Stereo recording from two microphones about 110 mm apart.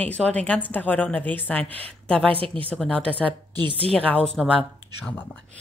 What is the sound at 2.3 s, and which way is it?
Speech, 55° right (ahead or behind).